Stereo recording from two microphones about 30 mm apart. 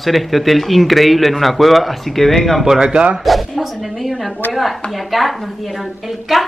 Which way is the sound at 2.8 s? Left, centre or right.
Right.